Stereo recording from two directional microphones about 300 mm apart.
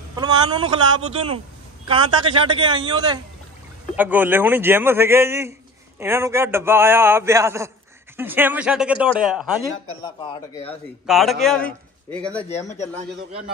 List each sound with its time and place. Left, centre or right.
0.1 s a man's voice: centre
10.5 s a man's voice: centre
11.1 s a man's voice: centre
12.4 s a man's voice: left